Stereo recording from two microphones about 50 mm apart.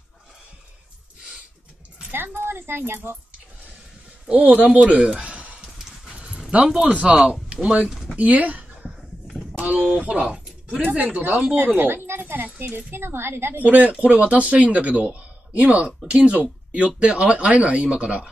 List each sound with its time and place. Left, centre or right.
2.1 s a sound: right
2.9 s a child's voice: right
4.4 s speech: right
5.6 s a sound: centre
6.9 s speech: right
7.8 s speech: centre
8.2 s a sound: right
9.9 s speech: right
11.5 s speech: right
13.6 s speech: right